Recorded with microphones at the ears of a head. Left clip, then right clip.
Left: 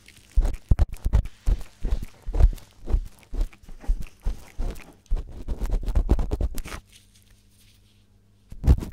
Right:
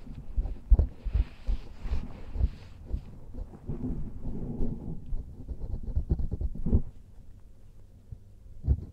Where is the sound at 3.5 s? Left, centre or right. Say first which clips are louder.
Right 7 dB; right.